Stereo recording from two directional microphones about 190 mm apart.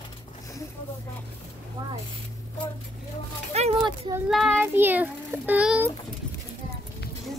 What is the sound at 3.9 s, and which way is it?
Child singing, 20° right (ahead or behind).